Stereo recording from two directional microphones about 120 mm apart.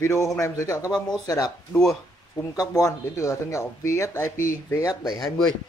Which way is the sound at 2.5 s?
30° left (ahead or behind).